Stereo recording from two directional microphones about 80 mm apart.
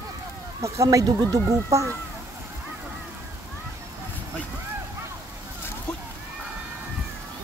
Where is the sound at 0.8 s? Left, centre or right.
Right.